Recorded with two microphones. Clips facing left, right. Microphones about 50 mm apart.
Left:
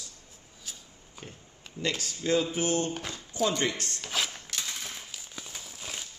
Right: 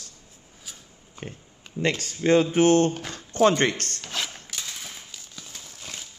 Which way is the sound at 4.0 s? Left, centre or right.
Centre.